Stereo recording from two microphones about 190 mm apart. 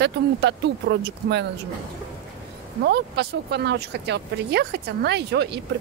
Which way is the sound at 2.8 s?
60° right (ahead or behind).